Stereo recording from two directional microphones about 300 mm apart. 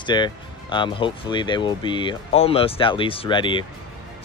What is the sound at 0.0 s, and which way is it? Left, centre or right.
Speech, centre.